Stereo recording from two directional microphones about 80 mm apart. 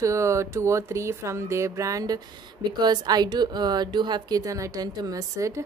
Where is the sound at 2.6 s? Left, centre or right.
Right.